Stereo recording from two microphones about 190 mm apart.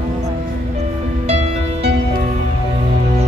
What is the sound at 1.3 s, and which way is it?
Music, 35° right (ahead or behind).